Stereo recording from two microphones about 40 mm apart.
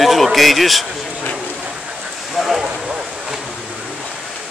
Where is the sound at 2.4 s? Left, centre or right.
Centre.